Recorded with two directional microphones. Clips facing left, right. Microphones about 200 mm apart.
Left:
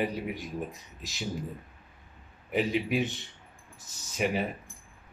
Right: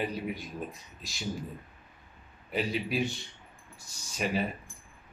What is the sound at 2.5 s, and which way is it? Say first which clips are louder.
A man's voice: left 3 dB; 15° left (ahead or behind).